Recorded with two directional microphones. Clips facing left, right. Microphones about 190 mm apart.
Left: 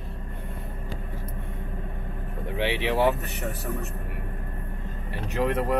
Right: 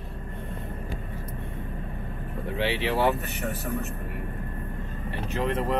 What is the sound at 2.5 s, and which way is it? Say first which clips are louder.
Speech: left 1 dB; 15° left (ahead or behind).